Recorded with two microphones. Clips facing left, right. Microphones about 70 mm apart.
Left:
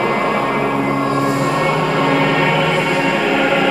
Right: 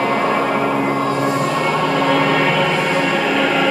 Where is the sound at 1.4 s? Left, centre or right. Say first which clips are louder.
Left 1 dB; centre.